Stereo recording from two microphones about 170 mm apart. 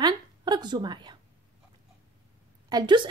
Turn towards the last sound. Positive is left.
turn(degrees=-25)  # may be behind; listen again after turning